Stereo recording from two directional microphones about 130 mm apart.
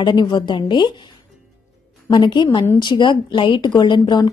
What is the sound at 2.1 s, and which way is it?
A woman's voice, 35° left (ahead or behind).